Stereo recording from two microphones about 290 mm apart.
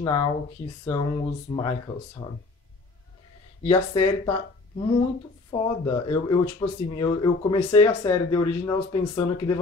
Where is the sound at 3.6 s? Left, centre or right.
Centre.